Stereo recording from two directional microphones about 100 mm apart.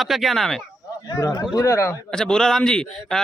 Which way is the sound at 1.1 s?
30° left (ahead or behind).